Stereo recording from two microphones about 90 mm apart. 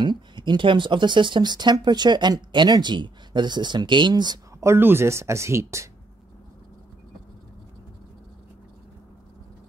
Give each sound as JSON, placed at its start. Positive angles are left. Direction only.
{"t": 0.0, "sound": "speech", "side_deg": -55}
{"t": 4.6, "sound": "speech", "side_deg": -30}